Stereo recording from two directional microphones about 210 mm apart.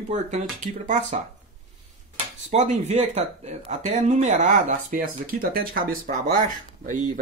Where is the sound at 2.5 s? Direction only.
35° right (ahead or behind).